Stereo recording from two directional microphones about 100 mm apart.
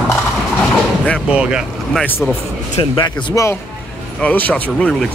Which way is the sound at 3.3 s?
30° left (ahead or behind).